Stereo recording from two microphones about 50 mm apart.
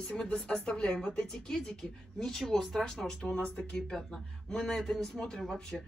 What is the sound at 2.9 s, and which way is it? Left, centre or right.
Speech, centre.